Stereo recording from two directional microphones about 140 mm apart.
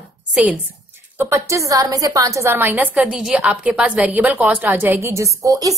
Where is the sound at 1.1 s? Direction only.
20° right (ahead or behind).